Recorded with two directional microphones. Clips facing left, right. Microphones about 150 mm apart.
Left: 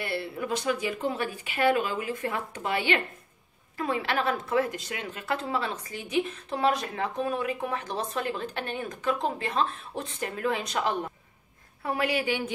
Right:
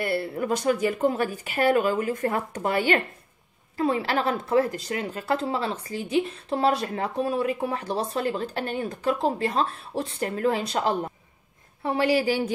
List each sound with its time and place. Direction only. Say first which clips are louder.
0.0 s speech: right 5 dB; 45° right (ahead or behind)
3.7 s a woman's voice: right 4 dB; 30° right (ahead or behind)